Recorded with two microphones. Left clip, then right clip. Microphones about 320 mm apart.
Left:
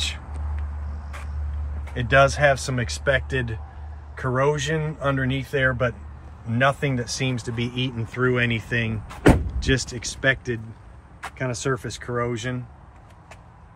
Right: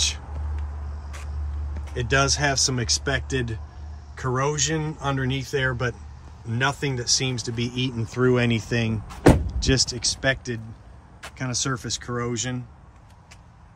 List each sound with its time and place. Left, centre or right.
2.0 s speech: centre